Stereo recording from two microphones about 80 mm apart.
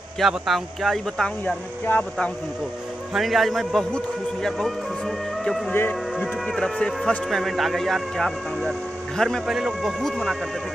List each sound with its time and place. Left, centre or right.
0.2 s speech: centre
1.4 s speech: centre
3.1 s a man's voice: centre
5.7 s speech: left
6.4 s speech: centre
9.5 s speech: centre